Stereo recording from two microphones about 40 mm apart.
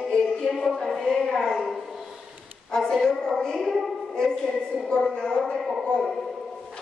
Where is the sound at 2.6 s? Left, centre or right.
Centre.